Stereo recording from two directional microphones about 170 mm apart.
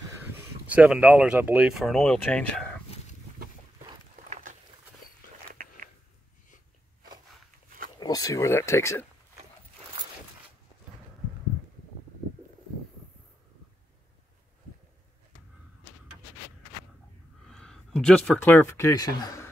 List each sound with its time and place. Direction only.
0.7 s speech: 10° right (ahead or behind)
4.3 s a sound: 50° right (ahead or behind)
5.5 s biting: 55° right (ahead or behind)
8.0 s speech: 20° left (ahead or behind)
17.5 s speech: 5° left (ahead or behind); by 19.5 s 20° left (ahead or behind)